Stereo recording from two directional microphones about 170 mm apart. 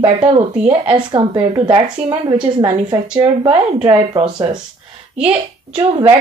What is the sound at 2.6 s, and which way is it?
Speech, 30° right (ahead or behind).